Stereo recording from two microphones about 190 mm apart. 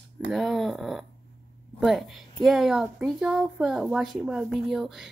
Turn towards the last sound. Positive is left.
turn(degrees=0)  # may be behind; listen again after turning